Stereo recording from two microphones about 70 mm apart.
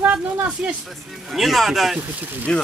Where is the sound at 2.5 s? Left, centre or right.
Centre.